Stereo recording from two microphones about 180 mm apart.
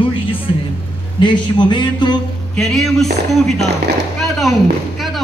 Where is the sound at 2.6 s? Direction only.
Centre (ahead or behind).